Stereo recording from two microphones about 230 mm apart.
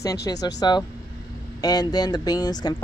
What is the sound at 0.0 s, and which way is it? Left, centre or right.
Speech, centre.